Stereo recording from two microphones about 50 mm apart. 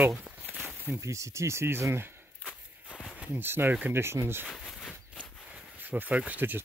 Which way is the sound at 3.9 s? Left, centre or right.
Right.